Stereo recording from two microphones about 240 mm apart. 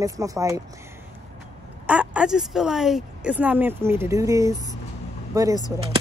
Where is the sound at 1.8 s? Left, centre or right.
Centre.